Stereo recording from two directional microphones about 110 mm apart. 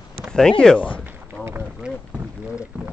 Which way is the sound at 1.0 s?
20° right (ahead or behind).